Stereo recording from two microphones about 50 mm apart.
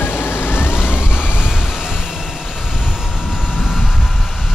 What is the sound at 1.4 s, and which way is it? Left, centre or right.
Vehicle, centre.